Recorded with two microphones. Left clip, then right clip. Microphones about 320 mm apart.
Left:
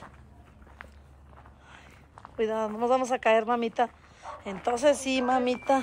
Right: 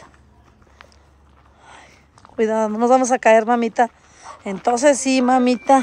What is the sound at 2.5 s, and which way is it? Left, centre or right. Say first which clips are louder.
Speech: right 11 dB; right.